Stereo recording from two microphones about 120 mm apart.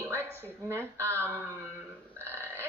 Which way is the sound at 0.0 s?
20° right (ahead or behind).